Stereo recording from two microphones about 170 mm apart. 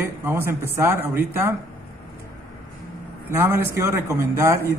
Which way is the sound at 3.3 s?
15° right (ahead or behind).